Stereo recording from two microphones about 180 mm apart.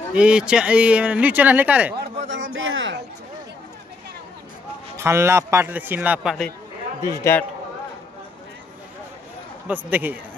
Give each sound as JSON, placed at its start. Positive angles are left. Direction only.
{"t": 0.1, "sound": "speech", "side_deg": -5}
{"t": 2.2, "sound": "speech", "side_deg": -90}
{"t": 4.9, "sound": "speech", "side_deg": -15}
{"t": 7.0, "sound": "a man's voice", "side_deg": 15}
{"t": 9.8, "sound": "speech", "side_deg": -10}